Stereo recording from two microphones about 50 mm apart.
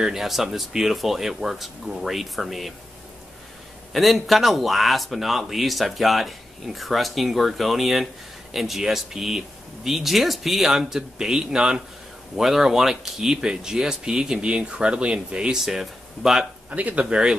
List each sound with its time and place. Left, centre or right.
0.0 s speech: centre
3.9 s speech: centre
15.6 s speech: centre
16.7 s speech: right
17.0 s speech: centre